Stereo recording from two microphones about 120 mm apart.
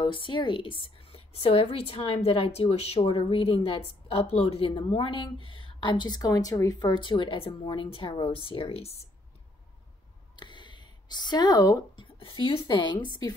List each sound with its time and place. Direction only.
0.0 s a woman's voice: 45° left (ahead or behind)
10.3 s a sound: 40° left (ahead or behind)
12.0 s a woman's voice: 45° left (ahead or behind)